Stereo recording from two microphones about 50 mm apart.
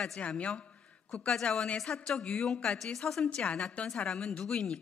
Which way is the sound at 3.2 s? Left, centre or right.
Left.